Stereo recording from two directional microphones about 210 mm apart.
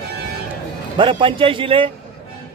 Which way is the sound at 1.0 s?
25° right (ahead or behind).